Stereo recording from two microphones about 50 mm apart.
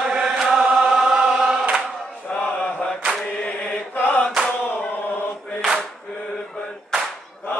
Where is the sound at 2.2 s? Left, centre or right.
Left.